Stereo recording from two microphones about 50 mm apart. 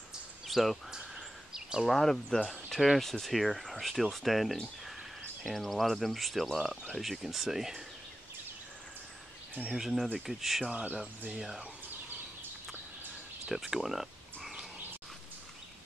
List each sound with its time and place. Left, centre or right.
0.5 s speech: centre
1.1 s a sound: centre
1.9 s speech: centre
9.8 s speech: centre
10.6 s speech: right
11.0 s speech: centre
13.5 s speech: centre